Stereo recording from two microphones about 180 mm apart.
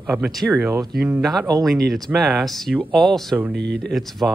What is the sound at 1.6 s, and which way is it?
Speech, centre (ahead or behind).